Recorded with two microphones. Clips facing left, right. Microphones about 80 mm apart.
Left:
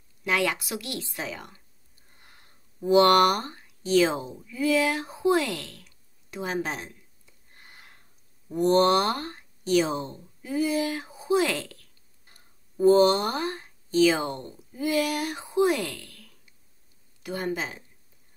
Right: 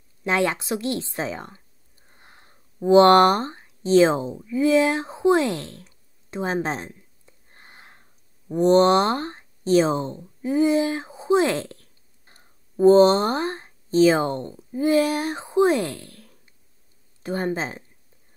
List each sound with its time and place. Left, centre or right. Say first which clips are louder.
0.2 s a woman's voice: right 4 dB; right
2.0 s a sound: right 4 dB; right
8.5 s speech: right 4 dB; right